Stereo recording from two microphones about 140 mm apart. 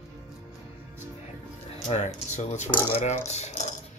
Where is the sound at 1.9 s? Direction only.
55° left (ahead or behind).